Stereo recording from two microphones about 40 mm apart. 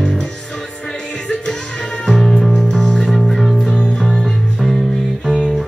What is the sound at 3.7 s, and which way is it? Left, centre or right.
Music, centre.